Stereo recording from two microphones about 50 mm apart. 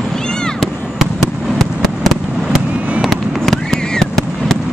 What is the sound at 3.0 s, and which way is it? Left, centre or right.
Fireworks, centre.